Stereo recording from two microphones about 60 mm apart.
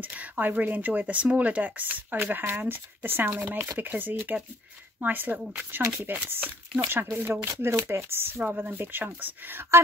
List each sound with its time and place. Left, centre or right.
0.0 s speech: right